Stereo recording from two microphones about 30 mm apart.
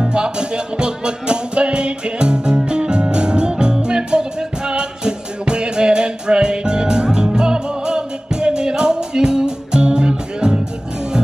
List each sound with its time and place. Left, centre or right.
0.0 s music: right